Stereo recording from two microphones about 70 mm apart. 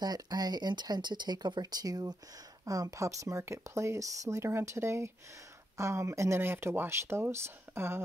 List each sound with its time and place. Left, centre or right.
0.0 s speech: right